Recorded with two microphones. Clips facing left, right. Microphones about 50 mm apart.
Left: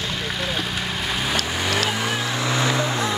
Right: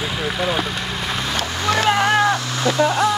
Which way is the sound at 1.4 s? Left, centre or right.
Centre.